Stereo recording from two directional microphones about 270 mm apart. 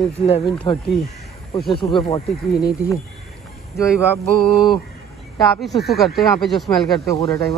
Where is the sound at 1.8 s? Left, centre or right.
Centre.